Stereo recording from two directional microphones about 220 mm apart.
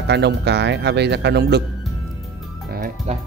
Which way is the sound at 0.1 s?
50° right (ahead or behind).